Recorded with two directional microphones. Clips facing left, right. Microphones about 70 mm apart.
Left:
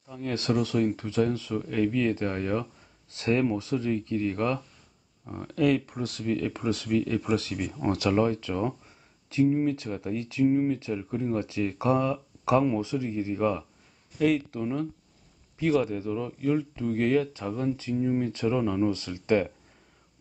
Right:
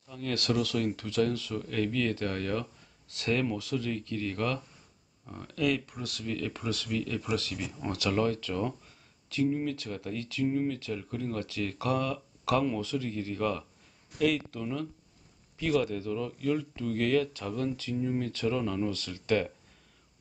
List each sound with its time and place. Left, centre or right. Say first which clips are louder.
0.1 s speech: left 3 dB; left